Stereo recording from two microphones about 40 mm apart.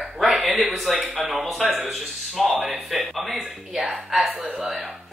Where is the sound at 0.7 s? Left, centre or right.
Centre.